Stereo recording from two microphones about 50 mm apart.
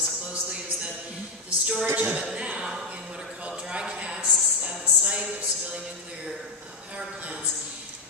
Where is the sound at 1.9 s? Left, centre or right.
Right.